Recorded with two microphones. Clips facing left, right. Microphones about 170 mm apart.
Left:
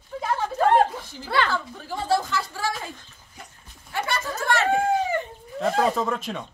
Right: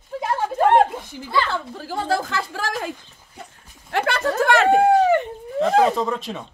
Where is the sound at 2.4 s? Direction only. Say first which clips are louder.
Right 2 dB; 90° right.